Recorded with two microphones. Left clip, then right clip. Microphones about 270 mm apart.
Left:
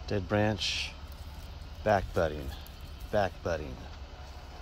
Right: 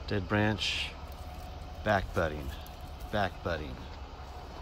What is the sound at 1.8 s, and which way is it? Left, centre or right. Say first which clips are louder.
Speech: left 2 dB; left.